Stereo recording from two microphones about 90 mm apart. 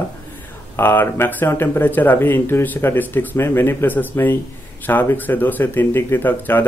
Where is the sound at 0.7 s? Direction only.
25° left (ahead or behind).